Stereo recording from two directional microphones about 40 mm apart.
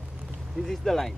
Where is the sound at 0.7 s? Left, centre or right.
Centre.